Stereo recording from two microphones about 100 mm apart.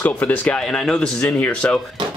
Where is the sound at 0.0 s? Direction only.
20° left (ahead or behind).